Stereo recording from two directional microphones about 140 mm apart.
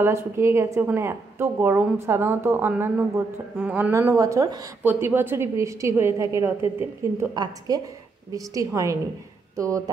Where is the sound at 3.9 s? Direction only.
20° right (ahead or behind).